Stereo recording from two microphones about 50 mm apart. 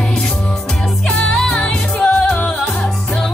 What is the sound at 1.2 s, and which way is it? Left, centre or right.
Music, centre.